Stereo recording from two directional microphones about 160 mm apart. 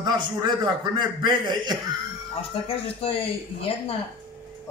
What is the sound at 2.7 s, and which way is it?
Speech, 35° left (ahead or behind).